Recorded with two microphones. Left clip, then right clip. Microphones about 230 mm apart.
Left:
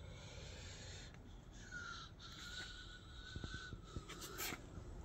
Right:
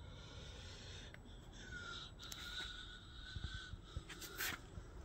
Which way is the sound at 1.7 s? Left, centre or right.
Centre.